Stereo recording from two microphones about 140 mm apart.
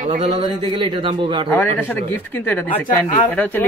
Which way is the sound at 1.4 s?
15° left (ahead or behind).